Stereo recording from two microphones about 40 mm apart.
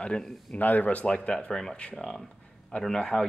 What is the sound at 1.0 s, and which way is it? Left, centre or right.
Speech, left.